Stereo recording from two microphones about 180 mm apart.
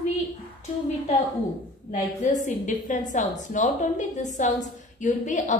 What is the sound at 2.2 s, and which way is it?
A woman's voice, 45° left (ahead or behind).